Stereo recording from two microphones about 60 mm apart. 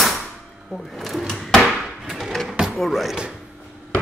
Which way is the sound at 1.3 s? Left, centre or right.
Centre.